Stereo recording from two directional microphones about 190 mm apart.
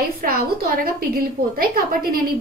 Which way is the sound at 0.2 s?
50° right (ahead or behind).